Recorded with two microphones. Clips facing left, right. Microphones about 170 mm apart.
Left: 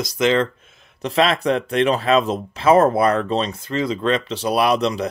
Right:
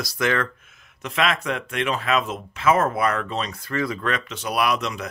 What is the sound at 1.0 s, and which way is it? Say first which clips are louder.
Speech: left 6 dB; 30° left (ahead or behind).